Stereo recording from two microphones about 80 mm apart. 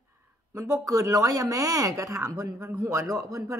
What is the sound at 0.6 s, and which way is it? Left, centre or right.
Speech, right.